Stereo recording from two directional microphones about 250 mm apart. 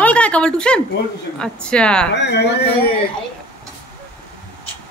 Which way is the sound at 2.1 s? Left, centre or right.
Left.